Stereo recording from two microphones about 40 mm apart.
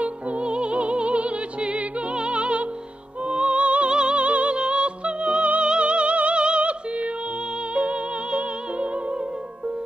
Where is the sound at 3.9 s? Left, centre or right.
Right.